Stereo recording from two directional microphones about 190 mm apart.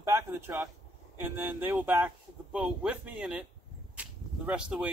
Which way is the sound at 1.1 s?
10° right (ahead or behind).